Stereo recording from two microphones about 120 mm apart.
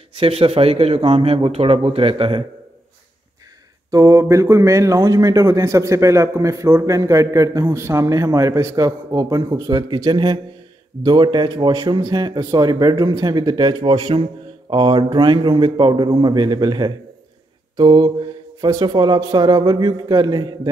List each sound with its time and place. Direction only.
0.1 s speech: 50° right (ahead or behind)
3.9 s a man's voice: 30° right (ahead or behind)